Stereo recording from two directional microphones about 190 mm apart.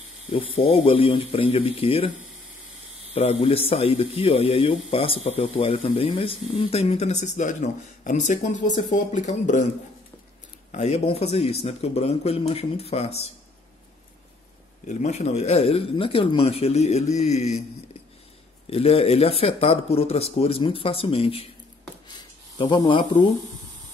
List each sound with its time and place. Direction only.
0.3 s speech: 30° left (ahead or behind)
3.2 s speech: 35° left (ahead or behind)
10.7 s speech: 35° left (ahead or behind)
14.9 s speech: 40° left (ahead or behind)
18.7 s speech: 30° left (ahead or behind)
22.6 s speech: 25° left (ahead or behind)